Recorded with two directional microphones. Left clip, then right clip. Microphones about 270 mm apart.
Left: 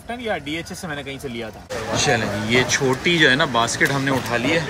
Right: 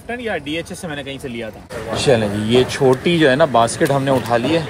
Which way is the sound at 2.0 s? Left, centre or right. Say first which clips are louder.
Right 7 dB; right.